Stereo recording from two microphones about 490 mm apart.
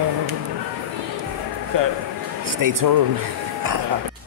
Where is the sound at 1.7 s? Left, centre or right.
Right.